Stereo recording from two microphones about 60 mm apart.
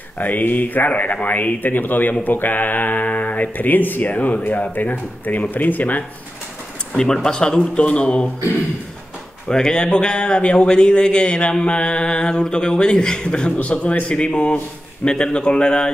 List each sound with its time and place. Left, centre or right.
0.2 s speech: left
6.9 s a man's voice: centre
9.5 s a man's voice: centre